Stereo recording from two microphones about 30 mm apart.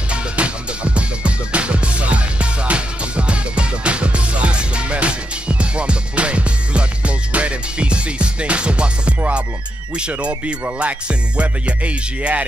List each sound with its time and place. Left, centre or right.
0.1 s music: right
9.9 s speech: right
10.8 s music: right